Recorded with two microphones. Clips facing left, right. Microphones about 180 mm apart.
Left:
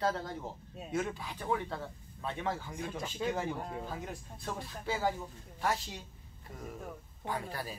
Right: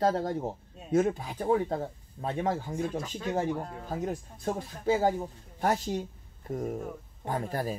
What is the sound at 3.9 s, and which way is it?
Speech, 45° right (ahead or behind).